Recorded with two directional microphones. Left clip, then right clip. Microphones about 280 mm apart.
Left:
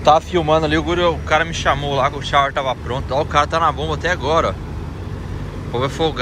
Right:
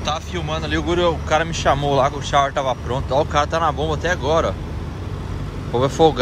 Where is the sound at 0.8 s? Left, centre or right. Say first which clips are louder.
Left 1 dB; centre.